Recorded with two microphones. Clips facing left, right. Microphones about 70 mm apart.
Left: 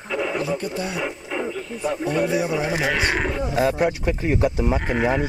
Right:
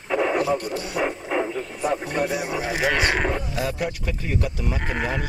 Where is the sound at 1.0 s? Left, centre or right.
Right.